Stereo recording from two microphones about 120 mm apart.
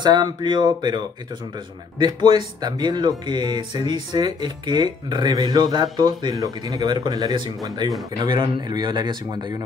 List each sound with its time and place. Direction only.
0.0 s speech: 35° right (ahead or behind)